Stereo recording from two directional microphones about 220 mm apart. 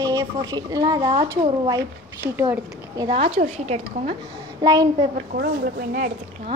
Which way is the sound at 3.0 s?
25° right (ahead or behind).